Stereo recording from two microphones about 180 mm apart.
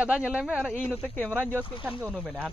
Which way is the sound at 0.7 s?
10° left (ahead or behind).